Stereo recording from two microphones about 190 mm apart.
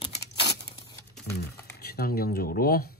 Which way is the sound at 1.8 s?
55° left (ahead or behind).